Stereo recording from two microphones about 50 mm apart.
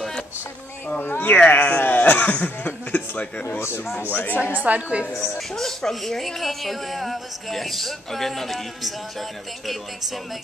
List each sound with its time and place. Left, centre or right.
1.0 s speech: left
3.4 s speech: left
4.1 s speech: left
4.4 s a woman's voice: right
5.6 s speech: centre